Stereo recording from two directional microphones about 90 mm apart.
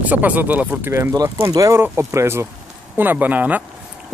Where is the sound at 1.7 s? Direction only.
25° right (ahead or behind).